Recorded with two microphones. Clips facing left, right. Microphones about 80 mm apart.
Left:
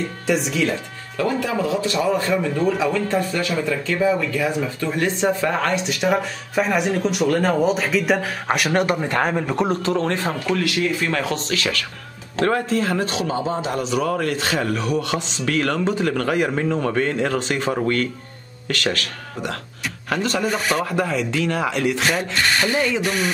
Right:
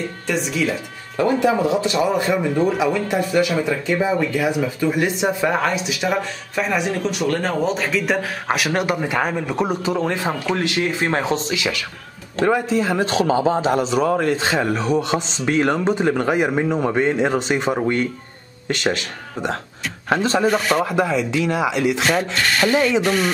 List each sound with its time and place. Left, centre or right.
0.3 s speech: centre
1.1 s speech: right
10.5 s a man's voice: right; by 22.1 s centre
22.1 s speech: centre